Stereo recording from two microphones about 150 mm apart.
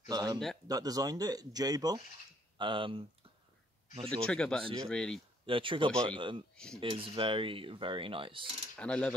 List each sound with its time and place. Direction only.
0.1 s speech: 25° right (ahead or behind)
4.1 s speech: 5° left (ahead or behind)
5.5 s speech: 35° right (ahead or behind)
6.5 s speech: 5° left (ahead or behind)
6.8 s speech: 35° right (ahead or behind)
8.7 s mechanisms: 5° left (ahead or behind)